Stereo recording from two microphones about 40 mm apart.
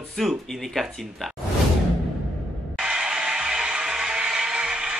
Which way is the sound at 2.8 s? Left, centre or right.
Centre.